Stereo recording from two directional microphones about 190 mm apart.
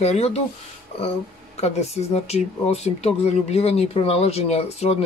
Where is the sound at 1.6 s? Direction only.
35° left (ahead or behind).